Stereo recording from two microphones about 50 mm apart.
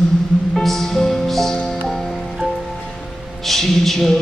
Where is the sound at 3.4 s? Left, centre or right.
Centre.